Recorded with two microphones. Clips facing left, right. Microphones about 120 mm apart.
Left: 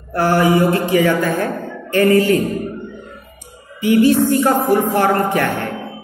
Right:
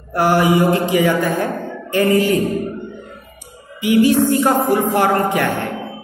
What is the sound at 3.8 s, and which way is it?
Speech, 15° right (ahead or behind).